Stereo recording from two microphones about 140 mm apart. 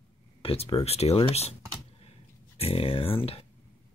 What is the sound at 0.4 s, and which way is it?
Speech, 45° left (ahead or behind).